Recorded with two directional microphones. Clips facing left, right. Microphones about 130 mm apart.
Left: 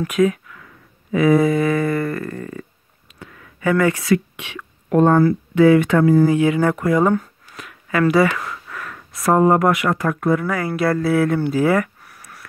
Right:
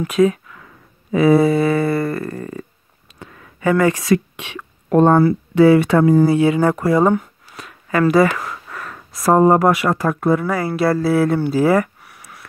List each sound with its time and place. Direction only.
0.0 s speech: 30° right (ahead or behind)